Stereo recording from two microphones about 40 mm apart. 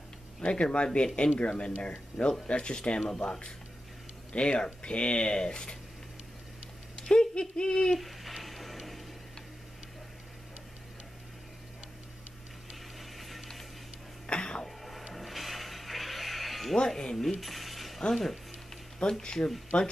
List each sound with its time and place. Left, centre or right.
0.4 s speech: left
7.0 s speech: left
8.0 s a sound: centre
13.0 s ratchet: centre
14.2 s a sound: left
15.1 s music: centre
16.7 s cutlery: centre
18.1 s speech: centre
18.9 s speech: left